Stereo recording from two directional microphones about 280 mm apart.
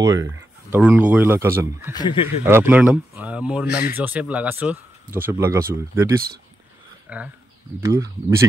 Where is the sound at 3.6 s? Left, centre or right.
Left.